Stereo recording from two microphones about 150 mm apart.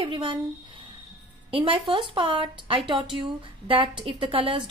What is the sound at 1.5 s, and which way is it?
Speech, 35° right (ahead or behind).